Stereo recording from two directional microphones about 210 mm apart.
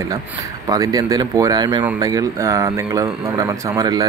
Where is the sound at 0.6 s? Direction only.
15° right (ahead or behind).